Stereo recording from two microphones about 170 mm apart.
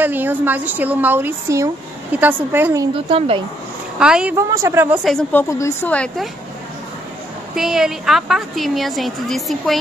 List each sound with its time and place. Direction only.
0.0 s a woman's voice: 10° right (ahead or behind)
3.1 s speech: 35° right (ahead or behind)
4.0 s a woman's voice: 5° right (ahead or behind)
4.4 s a woman's voice: 20° right (ahead or behind)
5.0 s a woman's voice: 5° left (ahead or behind)
7.5 s a woman's voice: centre (ahead or behind)